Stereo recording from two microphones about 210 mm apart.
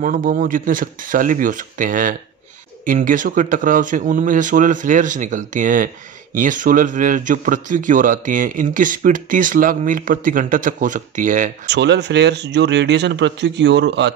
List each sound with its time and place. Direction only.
0.0 s a man's voice: 40° right (ahead or behind)
11.6 s speech: 55° right (ahead or behind)